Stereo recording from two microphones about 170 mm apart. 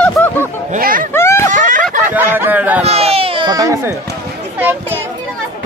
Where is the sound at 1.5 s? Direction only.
50° right (ahead or behind).